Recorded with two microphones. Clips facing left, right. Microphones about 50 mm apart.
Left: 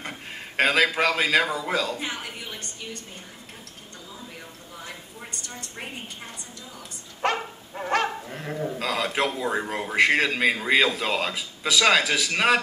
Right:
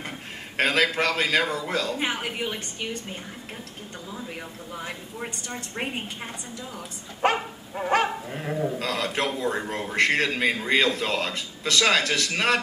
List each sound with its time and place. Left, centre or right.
0.6 s speech: centre
2.2 s a woman's voice: right
4.7 s a sound: right
7.2 s speech: centre